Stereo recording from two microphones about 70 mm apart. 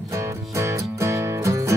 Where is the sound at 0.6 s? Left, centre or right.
Right.